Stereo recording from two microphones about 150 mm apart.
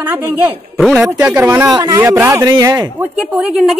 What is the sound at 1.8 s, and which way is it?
Speech, 25° right (ahead or behind).